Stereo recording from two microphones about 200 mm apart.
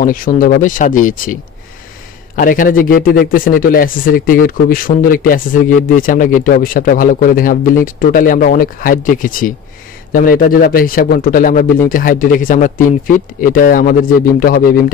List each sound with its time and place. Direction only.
0.0 s a man's voice: 45° left (ahead or behind)